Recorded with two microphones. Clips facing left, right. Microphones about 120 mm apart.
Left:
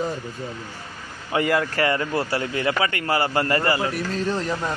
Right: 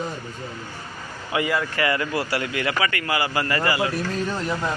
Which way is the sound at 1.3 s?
50° left (ahead or behind).